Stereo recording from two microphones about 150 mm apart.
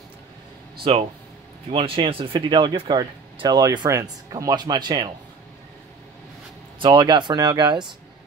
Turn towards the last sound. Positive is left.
turn(degrees=-30)  # may be behind; listen again after turning